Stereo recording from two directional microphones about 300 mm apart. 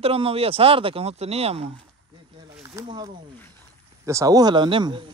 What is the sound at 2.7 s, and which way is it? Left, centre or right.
Speech, centre.